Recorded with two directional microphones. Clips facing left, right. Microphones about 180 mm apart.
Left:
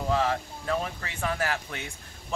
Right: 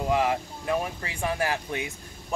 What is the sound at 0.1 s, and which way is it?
Speech, 15° right (ahead or behind).